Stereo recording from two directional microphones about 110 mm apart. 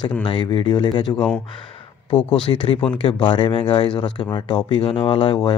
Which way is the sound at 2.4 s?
55° left (ahead or behind).